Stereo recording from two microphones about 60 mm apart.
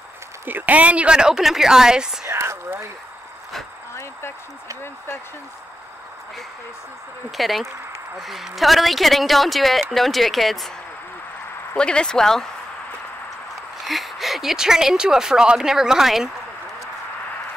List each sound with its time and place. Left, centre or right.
0.5 s speech: right; by 2.1 s centre
2.2 s speech: right
3.9 s a sound: left
7.2 s a woman's voice: centre
11.7 s speech: centre
13.8 s speech: centre